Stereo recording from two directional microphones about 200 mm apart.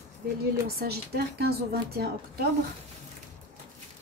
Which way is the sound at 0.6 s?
50° right (ahead or behind).